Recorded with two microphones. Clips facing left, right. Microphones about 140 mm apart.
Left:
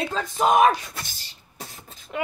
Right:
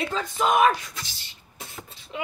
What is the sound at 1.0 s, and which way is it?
Beatboxing, 45° left (ahead or behind).